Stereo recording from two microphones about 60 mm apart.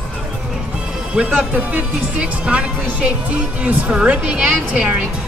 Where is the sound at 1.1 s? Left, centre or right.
Centre.